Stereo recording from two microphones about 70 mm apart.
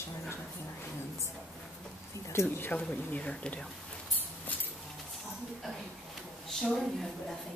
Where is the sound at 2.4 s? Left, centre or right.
Left.